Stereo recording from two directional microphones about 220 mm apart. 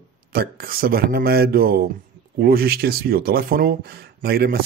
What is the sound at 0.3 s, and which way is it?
Speech, 45° right (ahead or behind).